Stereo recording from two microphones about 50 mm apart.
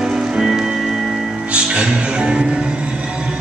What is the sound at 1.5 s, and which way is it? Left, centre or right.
Music, right.